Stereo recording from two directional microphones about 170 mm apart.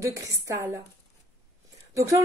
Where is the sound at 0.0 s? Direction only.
20° right (ahead or behind).